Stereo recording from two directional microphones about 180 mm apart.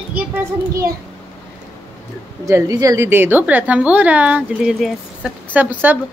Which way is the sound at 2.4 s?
20° right (ahead or behind).